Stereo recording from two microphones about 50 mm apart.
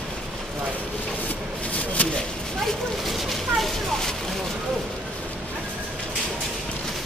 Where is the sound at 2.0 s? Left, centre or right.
Left.